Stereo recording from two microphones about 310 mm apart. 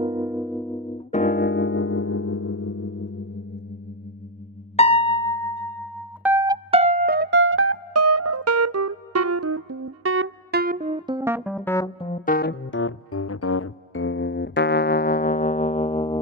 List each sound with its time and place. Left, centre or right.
0.0 s music: centre
0.9 s keyboard: left
4.7 s music: centre
12.1 s music: left